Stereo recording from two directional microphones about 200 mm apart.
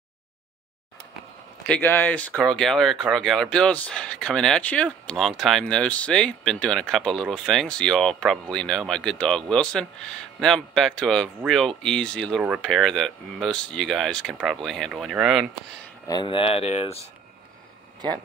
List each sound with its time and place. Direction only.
1.7 s speech: 10° left (ahead or behind)
16.1 s speech: 25° left (ahead or behind)